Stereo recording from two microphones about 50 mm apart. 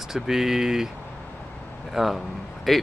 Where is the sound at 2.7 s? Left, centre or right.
Centre.